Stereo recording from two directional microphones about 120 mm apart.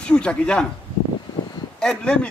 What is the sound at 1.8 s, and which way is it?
Speech, 10° left (ahead or behind).